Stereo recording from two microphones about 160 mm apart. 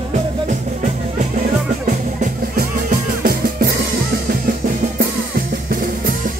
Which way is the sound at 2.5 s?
65° right (ahead or behind).